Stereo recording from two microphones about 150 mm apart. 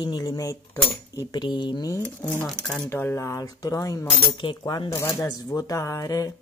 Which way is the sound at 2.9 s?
15° left (ahead or behind).